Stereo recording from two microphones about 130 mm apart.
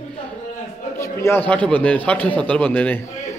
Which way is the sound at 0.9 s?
20° left (ahead or behind).